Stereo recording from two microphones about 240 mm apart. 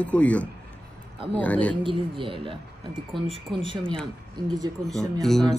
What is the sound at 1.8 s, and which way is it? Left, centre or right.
Speech, right.